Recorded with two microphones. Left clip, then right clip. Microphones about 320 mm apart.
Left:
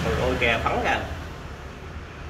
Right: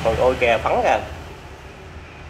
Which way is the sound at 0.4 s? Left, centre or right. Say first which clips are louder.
Right 5 dB; centre.